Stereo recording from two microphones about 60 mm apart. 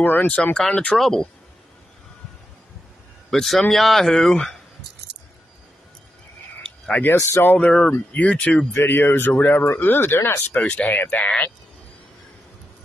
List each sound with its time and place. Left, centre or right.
0.0 s speech: left
0.6 s speech: centre
3.3 s a man's voice: centre
7.2 s speech: left
7.4 s speech: left
8.7 s speech: left
10.6 s speech: left